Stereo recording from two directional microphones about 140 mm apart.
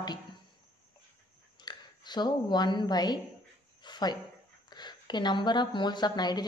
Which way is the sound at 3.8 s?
30° left (ahead or behind).